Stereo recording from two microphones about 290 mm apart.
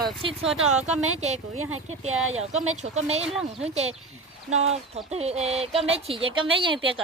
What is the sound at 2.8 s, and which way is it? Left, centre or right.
Speech, right.